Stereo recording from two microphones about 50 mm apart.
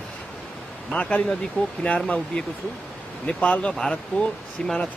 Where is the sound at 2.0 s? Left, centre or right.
Centre.